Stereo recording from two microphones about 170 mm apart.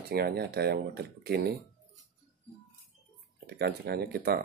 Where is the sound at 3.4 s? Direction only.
70° right (ahead or behind).